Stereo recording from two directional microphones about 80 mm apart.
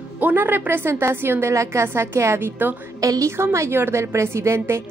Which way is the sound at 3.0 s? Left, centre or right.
Right.